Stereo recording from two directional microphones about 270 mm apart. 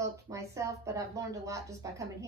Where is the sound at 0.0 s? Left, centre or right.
Centre.